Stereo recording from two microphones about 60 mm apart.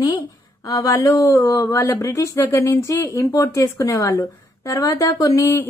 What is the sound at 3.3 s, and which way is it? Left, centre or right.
A woman's voice, left.